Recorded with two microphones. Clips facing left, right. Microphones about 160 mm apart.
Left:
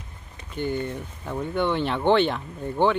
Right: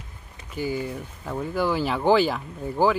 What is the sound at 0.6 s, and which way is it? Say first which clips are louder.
Speech: even; 5° right (ahead or behind).